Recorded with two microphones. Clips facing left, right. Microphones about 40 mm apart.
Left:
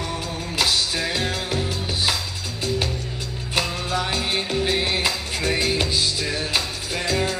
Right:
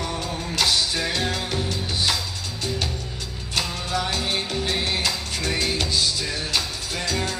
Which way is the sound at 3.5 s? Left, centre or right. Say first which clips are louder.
Left 2 dB; centre.